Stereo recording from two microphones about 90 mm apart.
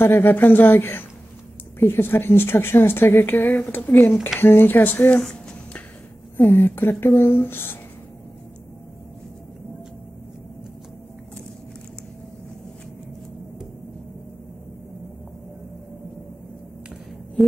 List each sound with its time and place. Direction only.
0.0 s a woman's voice: 25° left (ahead or behind)
6.3 s a woman's voice: 20° left (ahead or behind)